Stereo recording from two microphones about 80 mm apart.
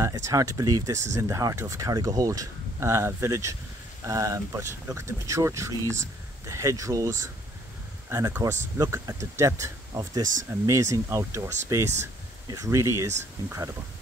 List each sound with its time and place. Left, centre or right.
0.0 s speech: right
0.9 s speech: right
8.4 s speech: right